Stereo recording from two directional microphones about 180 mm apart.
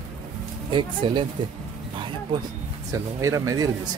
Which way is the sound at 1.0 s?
25° right (ahead or behind).